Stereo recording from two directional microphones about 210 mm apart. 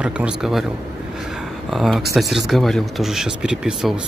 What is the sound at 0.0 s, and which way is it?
Speech, 5° right (ahead or behind).